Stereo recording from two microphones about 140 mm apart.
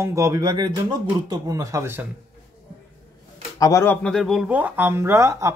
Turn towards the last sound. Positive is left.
turn(degrees=-20)  # may be behind; listen again after turning